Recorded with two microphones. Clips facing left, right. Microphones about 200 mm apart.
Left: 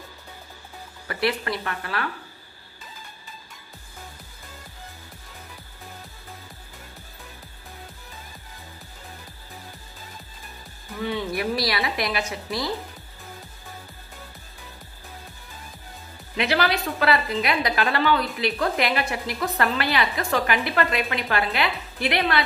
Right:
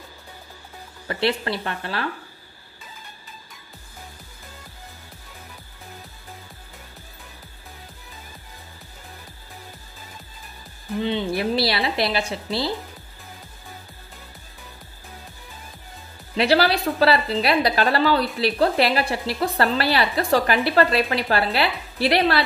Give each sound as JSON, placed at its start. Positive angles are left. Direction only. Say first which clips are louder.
{"t": 1.0, "sound": "a woman's voice", "louder": "right 2 dB", "side_deg": -30}
{"t": 11.0, "sound": "a woman's voice", "louder": "right 3 dB", "side_deg": -25}
{"t": 16.3, "sound": "a woman's voice", "louder": "right 4 dB", "side_deg": -35}